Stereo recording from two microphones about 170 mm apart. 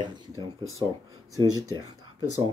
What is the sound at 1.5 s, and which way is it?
Speech, 20° right (ahead or behind).